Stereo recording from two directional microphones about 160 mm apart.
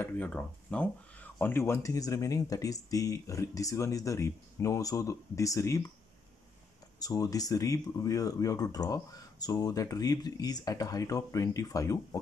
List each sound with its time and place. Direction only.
0.0 s speech: 10° left (ahead or behind)
7.0 s speech: 20° left (ahead or behind)